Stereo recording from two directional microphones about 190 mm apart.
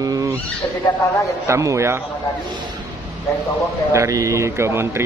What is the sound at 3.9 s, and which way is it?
Speech, 15° right (ahead or behind).